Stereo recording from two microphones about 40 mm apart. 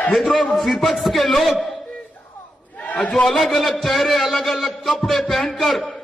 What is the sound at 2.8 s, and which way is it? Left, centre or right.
Speech, left.